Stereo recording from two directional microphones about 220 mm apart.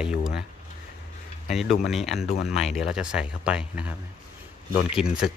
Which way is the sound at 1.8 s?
Centre (ahead or behind).